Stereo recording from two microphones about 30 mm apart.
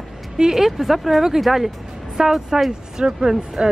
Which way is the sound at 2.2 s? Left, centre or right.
Centre.